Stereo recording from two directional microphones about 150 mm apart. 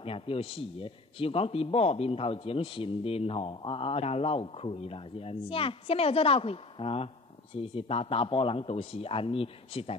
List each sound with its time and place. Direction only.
0.0 s speech: 40° left (ahead or behind)